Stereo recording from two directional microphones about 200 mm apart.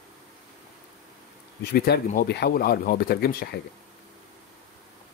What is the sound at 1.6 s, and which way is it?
Speech, 55° left (ahead or behind).